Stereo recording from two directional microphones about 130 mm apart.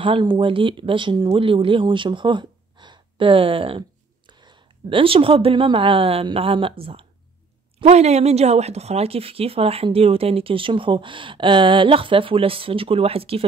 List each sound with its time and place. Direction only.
0.0 s a woman's voice: 40° right (ahead or behind)